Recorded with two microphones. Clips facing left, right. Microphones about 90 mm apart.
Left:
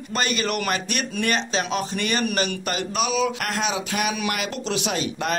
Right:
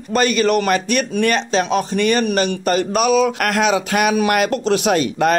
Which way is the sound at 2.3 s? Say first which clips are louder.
Right 8 dB; 40° right (ahead or behind).